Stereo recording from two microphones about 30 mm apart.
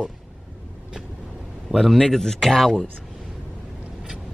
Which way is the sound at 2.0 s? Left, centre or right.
Centre.